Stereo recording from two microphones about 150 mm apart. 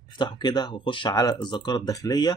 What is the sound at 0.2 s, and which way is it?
Speech, 30° left (ahead or behind).